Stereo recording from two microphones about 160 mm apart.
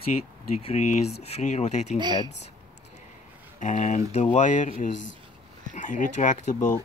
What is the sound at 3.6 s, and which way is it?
Speech, 50° left (ahead or behind).